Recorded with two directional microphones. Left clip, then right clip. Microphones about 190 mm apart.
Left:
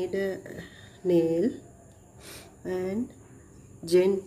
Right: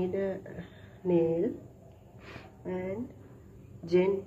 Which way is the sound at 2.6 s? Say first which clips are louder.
Left 5 dB; 60° left (ahead or behind).